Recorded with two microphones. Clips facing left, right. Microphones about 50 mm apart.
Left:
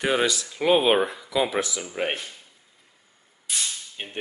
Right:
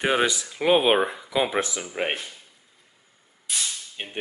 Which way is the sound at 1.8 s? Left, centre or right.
Centre.